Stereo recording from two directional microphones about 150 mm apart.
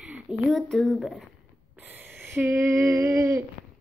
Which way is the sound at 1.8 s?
10° right (ahead or behind).